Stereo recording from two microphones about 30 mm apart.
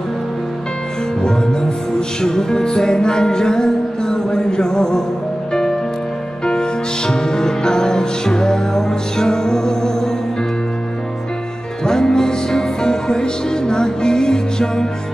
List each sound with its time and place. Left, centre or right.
1.2 s music: left
11.8 s music: left